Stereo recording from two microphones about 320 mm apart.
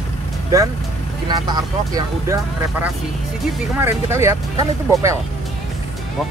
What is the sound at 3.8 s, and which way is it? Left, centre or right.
Speech, centre.